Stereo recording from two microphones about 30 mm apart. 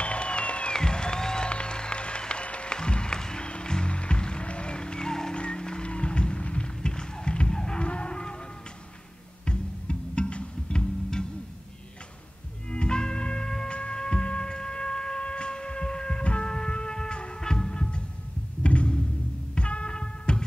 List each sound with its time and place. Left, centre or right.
0.0 s music: left
0.7 s applause: left
1.5 s music: left
2.7 s music: left
6.4 s run: left
7.5 s music: left
7.8 s music: left
9.4 s music: left
10.7 s music: left
12.7 s music: left
13.7 s a sound: left
16.4 s music: left
17.7 s music: left
18.6 s music: left